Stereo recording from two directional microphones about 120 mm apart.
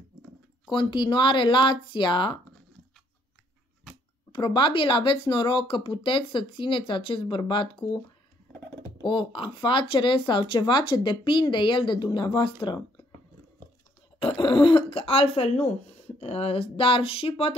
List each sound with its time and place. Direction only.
0.7 s speech: 40° left (ahead or behind)
4.3 s speech: 40° left (ahead or behind)
8.8 s speech: 35° left (ahead or behind)
14.2 s speech: 50° left (ahead or behind)